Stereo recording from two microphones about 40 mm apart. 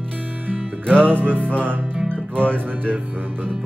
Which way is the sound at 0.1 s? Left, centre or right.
Right.